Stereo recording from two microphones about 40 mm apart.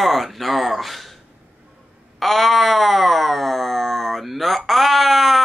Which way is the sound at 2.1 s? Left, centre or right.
Centre.